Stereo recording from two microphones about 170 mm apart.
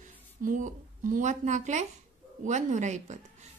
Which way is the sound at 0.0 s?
50° right (ahead or behind).